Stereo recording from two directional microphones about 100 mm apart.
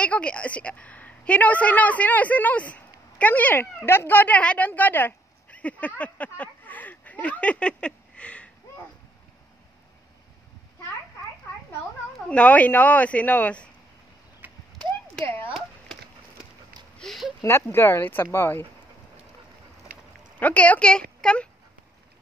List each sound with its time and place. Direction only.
0.0 s a woman's voice: 10° left (ahead or behind)
12.3 s speech: 15° left (ahead or behind)
14.4 s a sound: 20° right (ahead or behind)
17.0 s a sound: centre (ahead or behind)
17.4 s speech: 25° left (ahead or behind)
20.3 s speech: 15° left (ahead or behind)